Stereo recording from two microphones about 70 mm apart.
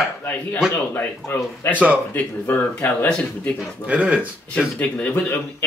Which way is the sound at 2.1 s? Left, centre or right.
Left.